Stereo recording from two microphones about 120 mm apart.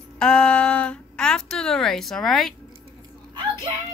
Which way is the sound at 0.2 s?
5° left (ahead or behind).